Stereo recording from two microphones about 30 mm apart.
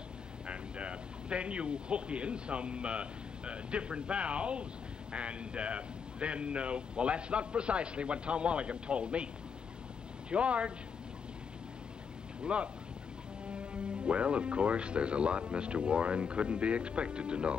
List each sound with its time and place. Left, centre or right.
0.5 s speech: right
10.3 s speech: right
12.5 s speech: right